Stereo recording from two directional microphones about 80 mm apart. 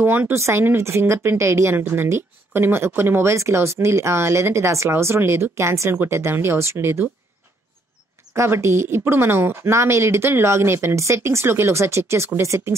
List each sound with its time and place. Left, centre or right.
0.0 s a woman's voice: right
8.4 s a woman's voice: right